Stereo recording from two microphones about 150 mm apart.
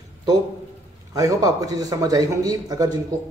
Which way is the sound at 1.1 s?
20° right (ahead or behind).